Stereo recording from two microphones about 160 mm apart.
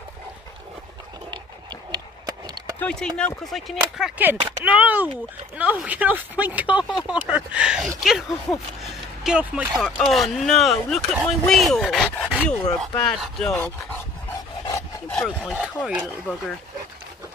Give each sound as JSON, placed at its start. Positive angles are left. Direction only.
{"t": 1.9, "sound": "a sound", "side_deg": -25}
{"t": 2.8, "sound": "speech", "side_deg": 5}
{"t": 4.2, "sound": "speech", "side_deg": -10}
{"t": 15.0, "sound": "speech", "side_deg": 0}